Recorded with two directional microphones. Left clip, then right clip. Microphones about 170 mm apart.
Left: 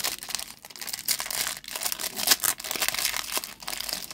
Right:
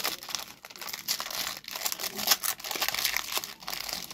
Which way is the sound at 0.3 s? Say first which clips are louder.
Left 2 dB; 15° left (ahead or behind).